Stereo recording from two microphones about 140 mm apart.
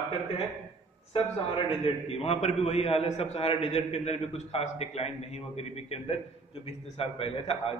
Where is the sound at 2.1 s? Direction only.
45° left (ahead or behind).